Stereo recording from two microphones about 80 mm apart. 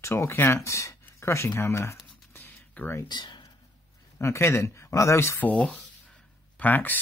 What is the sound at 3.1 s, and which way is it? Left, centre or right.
Speech, left.